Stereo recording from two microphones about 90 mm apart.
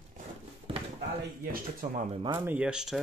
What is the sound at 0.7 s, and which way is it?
Speech, 90° right.